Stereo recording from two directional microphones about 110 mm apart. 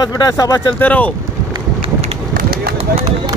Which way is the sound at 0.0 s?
35° left (ahead or behind).